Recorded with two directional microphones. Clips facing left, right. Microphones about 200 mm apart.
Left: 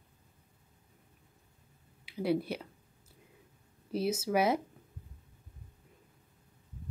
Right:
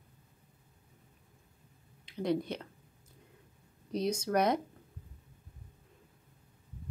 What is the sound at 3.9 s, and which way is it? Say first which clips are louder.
Speech: even; 5° left (ahead or behind).